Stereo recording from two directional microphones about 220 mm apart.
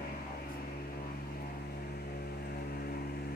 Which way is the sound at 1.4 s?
45° left (ahead or behind).